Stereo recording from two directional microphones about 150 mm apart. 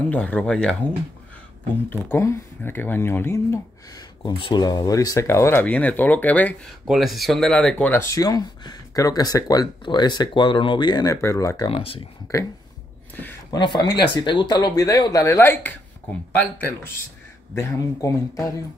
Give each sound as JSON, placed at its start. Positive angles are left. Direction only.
{"t": 0.1, "sound": "speech", "side_deg": 10}
{"t": 2.0, "sound": "speech", "side_deg": 20}
{"t": 4.2, "sound": "speech", "side_deg": 35}
{"t": 6.9, "sound": "speech", "side_deg": 0}
{"t": 11.7, "sound": "speech", "side_deg": 40}
{"t": 12.3, "sound": "speech", "side_deg": 20}
{"t": 13.5, "sound": "speech", "side_deg": 30}
{"t": 17.6, "sound": "speech", "side_deg": 20}